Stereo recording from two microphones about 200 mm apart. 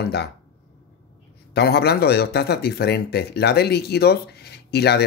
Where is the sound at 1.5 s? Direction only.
55° left (ahead or behind).